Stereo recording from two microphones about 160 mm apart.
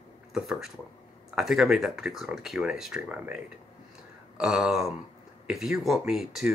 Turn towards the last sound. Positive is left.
turn(degrees=0)  # may be behind; listen again after turning